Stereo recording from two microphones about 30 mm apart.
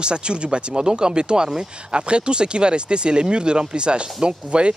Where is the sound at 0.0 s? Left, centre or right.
Right.